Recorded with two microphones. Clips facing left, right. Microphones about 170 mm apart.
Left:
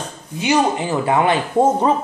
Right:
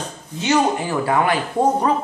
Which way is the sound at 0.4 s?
15° left (ahead or behind).